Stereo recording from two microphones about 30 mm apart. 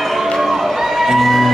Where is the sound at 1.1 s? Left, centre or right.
Centre.